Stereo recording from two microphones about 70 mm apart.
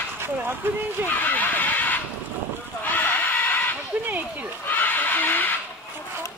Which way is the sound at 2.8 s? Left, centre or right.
Left.